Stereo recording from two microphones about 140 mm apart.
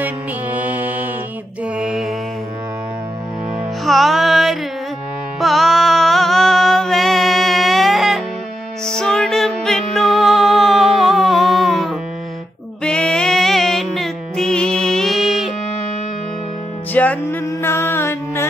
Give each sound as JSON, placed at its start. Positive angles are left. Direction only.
{"t": 0.0, "sound": "music", "side_deg": -10}
{"t": 1.8, "sound": "mantra", "side_deg": -5}
{"t": 3.8, "sound": "music", "side_deg": 0}
{"t": 16.9, "sound": "music", "side_deg": 10}